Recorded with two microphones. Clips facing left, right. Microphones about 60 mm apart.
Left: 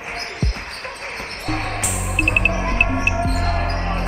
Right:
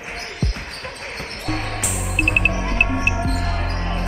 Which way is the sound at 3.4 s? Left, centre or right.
Left.